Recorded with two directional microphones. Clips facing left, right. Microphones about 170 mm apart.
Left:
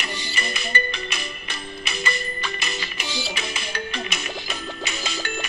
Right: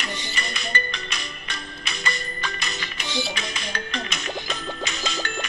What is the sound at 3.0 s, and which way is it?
Music, 20° right (ahead or behind).